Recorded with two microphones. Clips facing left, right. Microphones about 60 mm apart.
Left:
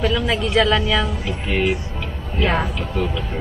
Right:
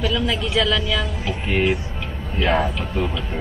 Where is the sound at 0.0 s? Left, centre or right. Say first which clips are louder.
Left 2 dB; left.